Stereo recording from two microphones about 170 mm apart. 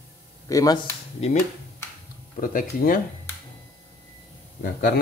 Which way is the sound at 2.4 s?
55° left (ahead or behind).